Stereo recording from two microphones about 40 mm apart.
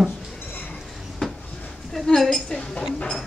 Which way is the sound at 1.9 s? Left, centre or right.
Centre.